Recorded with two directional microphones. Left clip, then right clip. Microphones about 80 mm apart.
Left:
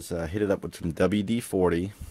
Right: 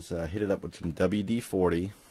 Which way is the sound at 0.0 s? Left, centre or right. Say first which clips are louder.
Left 3 dB; left.